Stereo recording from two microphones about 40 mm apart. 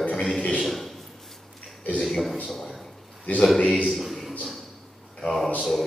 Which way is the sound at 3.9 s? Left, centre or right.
Centre.